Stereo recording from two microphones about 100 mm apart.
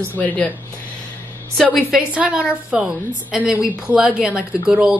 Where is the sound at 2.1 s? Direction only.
10° right (ahead or behind).